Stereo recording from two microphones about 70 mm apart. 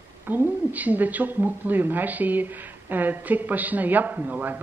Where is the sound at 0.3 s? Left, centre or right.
Right.